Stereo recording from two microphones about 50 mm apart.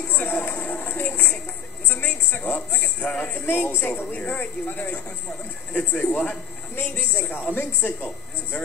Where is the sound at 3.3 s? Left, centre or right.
Left.